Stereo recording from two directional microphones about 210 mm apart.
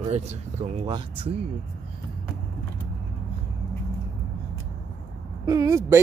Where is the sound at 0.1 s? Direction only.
30° right (ahead or behind).